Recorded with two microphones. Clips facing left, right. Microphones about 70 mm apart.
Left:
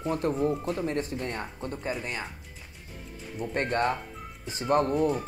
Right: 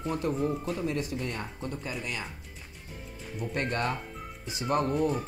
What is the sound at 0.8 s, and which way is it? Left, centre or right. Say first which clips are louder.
Speech: left 1 dB; left.